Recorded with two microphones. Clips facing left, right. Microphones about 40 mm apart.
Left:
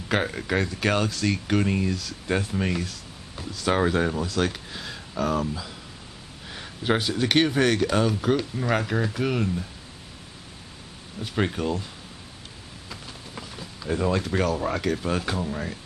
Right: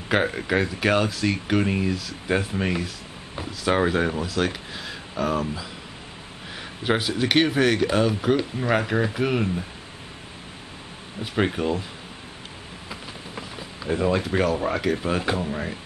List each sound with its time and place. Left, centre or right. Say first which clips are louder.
0.1 s speech: right 3 dB; centre
11.1 s speech: right 2 dB; centre
12.9 s speech: right 3 dB; centre